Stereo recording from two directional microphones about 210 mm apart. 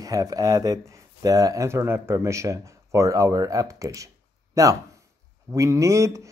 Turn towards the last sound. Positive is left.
turn(degrees=-15)  # may be behind; listen again after turning